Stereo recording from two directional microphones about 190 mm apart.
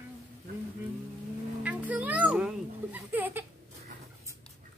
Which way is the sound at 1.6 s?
10° right (ahead or behind).